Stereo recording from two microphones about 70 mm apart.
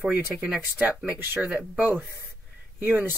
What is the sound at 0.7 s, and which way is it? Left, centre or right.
Speech, right.